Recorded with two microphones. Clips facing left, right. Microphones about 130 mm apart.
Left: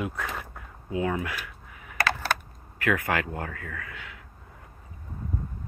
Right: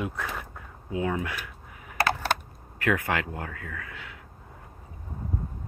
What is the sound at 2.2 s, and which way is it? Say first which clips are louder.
Camera: right 1 dB; 25° right (ahead or behind).